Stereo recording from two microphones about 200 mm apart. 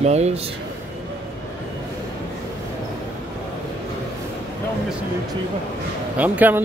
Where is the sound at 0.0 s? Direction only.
35° right (ahead or behind).